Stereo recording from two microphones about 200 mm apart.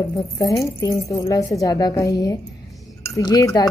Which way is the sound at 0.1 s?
15° left (ahead or behind).